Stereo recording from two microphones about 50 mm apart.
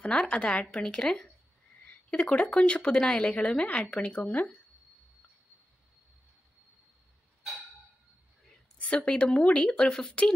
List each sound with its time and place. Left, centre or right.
0.0 s speech: left
8.5 s speech: left